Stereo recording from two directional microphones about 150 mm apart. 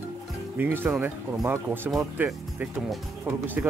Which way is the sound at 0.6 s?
15° right (ahead or behind).